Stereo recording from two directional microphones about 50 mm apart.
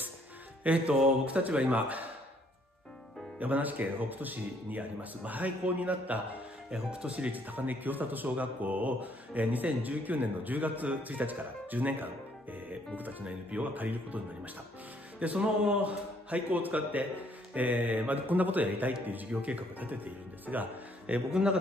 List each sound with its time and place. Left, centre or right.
0.7 s a man's voice: right
3.3 s speech: right
13.2 s speech: right
21.3 s a man's voice: centre